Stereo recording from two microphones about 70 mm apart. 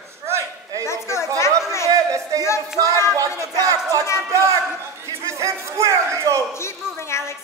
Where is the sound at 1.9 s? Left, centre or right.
Right.